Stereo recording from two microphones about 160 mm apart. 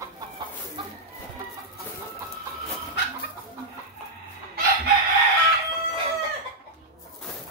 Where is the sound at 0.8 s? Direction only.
30° right (ahead or behind).